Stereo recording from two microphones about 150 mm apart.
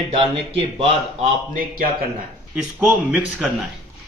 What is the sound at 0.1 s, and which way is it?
Speech, 40° right (ahead or behind).